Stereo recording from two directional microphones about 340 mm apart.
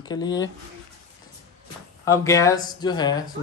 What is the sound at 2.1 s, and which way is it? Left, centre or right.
Speech, centre.